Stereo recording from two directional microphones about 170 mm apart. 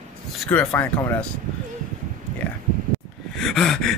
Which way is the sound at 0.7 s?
15° left (ahead or behind).